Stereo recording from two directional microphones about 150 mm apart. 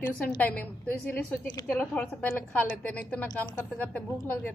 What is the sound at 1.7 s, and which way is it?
A woman's voice, 10° left (ahead or behind).